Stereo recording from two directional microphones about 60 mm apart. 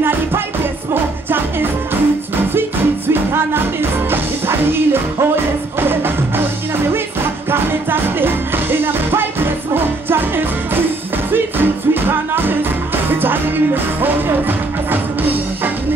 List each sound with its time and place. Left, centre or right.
4.1 s music: right
7.5 s music: right